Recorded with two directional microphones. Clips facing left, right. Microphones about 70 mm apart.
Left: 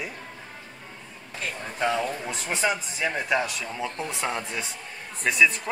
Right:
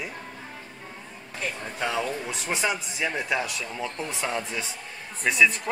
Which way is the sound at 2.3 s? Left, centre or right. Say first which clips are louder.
Left 1 dB; centre.